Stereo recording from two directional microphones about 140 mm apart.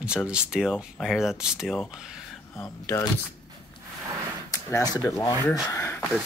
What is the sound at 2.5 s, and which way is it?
Speech, 20° left (ahead or behind).